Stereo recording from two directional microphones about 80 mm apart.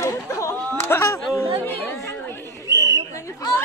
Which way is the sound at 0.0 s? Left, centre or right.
Left.